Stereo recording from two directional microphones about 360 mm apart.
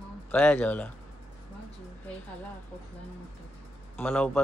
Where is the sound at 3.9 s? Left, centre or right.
Centre.